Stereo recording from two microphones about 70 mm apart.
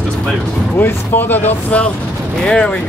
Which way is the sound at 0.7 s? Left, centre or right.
Left.